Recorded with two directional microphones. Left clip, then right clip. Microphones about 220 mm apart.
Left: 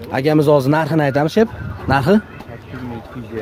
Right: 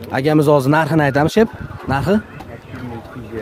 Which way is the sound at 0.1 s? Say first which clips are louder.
Even; 5° right (ahead or behind).